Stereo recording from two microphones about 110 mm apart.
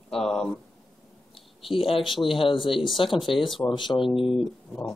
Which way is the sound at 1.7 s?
55° left (ahead or behind).